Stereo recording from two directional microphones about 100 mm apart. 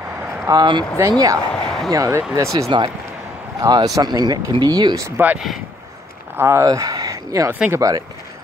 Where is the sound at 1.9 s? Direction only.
35° right (ahead or behind).